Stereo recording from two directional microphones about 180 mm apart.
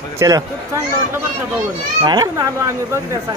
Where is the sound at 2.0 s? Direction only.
20° right (ahead or behind).